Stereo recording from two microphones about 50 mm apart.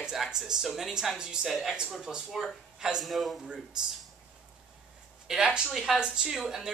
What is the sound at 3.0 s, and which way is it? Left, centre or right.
Speech, centre.